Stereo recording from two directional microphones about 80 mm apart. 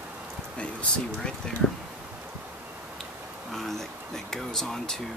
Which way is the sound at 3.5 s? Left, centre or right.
Centre.